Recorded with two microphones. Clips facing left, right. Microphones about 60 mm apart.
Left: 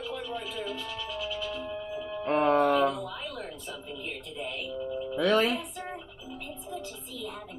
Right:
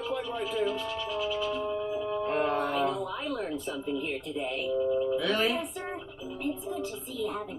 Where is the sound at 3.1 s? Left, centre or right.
Right.